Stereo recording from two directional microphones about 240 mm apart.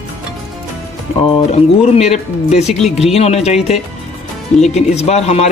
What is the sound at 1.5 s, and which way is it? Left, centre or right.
Speech, left.